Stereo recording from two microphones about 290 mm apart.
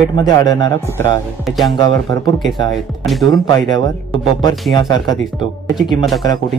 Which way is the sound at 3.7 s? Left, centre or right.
Centre.